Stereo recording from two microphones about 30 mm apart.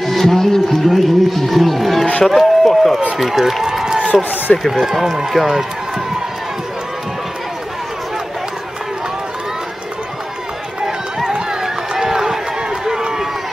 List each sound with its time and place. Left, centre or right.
0.0 s speech: centre
0.8 s speech: centre
3.8 s a sound: centre
4.5 s a man's voice: left
4.9 s speech: centre
11.6 s run: centre